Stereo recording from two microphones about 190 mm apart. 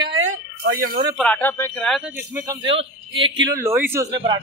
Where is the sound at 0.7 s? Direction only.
50° right (ahead or behind).